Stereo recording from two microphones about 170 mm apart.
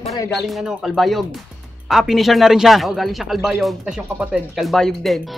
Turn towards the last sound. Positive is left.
turn(degrees=0)  # may be behind; listen again after turning